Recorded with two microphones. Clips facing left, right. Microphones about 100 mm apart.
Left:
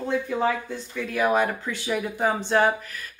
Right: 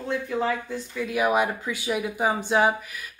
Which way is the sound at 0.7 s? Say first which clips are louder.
Right 1 dB; 10° right (ahead or behind).